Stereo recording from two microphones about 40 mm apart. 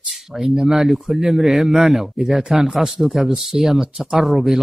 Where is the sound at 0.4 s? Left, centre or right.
Centre.